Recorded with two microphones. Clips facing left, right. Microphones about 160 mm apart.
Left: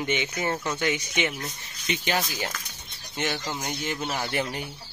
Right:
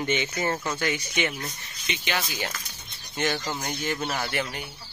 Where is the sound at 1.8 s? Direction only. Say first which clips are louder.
Left 3 dB; 40° left (ahead or behind).